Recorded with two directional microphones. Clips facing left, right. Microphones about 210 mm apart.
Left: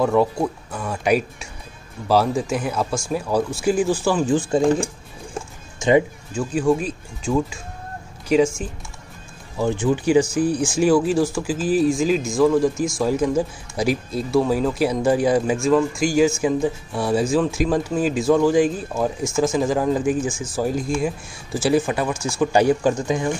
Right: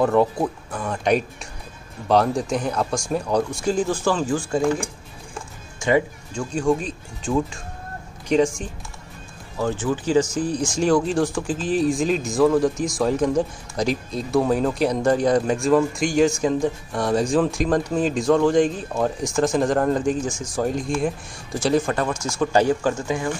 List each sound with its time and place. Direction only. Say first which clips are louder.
0.0 s speech: even; centre (ahead or behind)
4.3 s speech: left 4 dB; 20° left (ahead or behind)
5.8 s music: left 3 dB; 20° left (ahead or behind)
6.3 s speech: left 2 dB; 5° left (ahead or behind)
9.6 s speech: left 3 dB; 15° left (ahead or behind)